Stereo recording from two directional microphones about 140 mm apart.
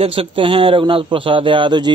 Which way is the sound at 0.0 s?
40° right (ahead or behind).